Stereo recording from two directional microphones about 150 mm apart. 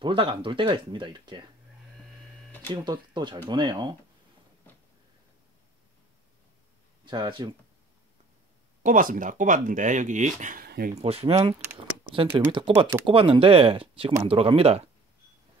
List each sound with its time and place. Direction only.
0.0 s speech: 35° right (ahead or behind)
2.7 s speech: 30° right (ahead or behind)
7.1 s speech: 30° right (ahead or behind)
8.8 s speech: 65° right (ahead or behind); by 10.9 s 85° right
11.0 s speech: 40° right (ahead or behind)
12.5 s speech: 35° right (ahead or behind)